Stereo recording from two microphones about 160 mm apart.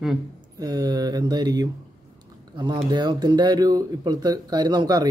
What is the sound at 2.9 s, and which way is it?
Speech, 25° right (ahead or behind).